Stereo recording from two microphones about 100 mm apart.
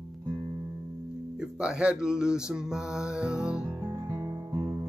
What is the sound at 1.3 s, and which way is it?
Music, 10° right (ahead or behind).